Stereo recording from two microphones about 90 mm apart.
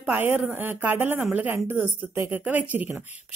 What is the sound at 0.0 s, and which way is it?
A woman's voice, 15° right (ahead or behind).